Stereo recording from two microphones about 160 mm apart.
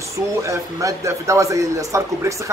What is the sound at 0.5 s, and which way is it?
Speech, 20° right (ahead or behind).